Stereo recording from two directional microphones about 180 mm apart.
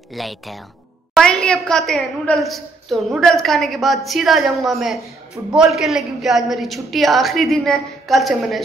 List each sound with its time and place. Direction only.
0.1 s a woman's voice: centre (ahead or behind)